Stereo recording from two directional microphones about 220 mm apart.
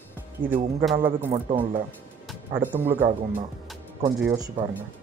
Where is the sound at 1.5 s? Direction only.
25° right (ahead or behind).